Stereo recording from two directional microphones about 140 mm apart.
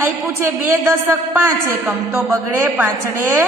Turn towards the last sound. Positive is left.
turn(degrees=-15)  # may be behind; listen again after turning